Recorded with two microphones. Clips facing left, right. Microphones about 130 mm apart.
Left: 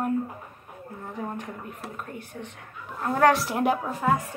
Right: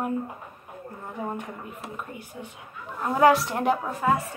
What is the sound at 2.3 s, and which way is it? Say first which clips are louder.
A woman's voice: even; 10° right (ahead or behind).